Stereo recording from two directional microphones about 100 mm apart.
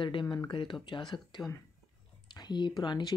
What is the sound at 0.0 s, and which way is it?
Speech, 50° left (ahead or behind).